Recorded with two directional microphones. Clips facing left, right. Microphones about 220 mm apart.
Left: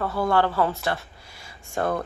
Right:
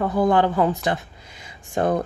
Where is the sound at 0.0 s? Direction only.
15° right (ahead or behind).